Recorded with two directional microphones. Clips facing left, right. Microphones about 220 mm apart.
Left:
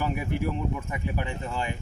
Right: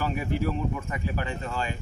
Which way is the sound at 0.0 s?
15° left (ahead or behind).